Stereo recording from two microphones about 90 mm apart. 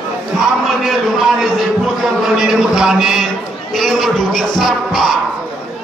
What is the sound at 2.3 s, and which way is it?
A man's voice, 5° right (ahead or behind).